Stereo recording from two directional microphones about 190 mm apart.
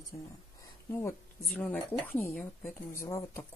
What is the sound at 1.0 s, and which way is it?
Speech, 5° left (ahead or behind).